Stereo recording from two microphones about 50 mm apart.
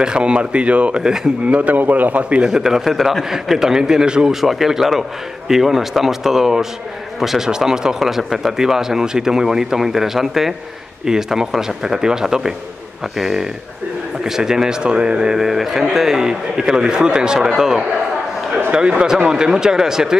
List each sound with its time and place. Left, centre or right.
0.0 s speech: centre
1.4 s speech: right
2.5 s speech: centre
4.4 s speech: centre
18.7 s speech: centre